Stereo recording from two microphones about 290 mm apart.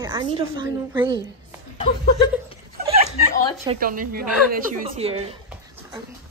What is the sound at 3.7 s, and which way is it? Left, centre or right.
A woman's voice, right.